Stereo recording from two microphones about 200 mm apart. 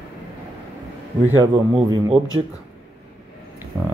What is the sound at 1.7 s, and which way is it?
Speech, 25° right (ahead or behind).